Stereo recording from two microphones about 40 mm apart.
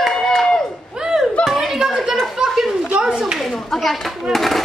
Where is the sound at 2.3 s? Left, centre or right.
Centre.